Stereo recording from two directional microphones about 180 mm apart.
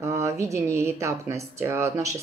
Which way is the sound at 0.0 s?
15° right (ahead or behind).